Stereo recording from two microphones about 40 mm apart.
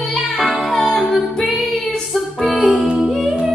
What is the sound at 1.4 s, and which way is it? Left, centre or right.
Child singing, centre.